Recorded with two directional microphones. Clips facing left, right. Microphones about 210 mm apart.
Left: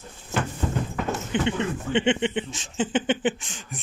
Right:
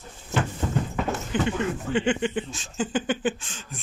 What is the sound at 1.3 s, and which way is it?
Speech, 20° left (ahead or behind).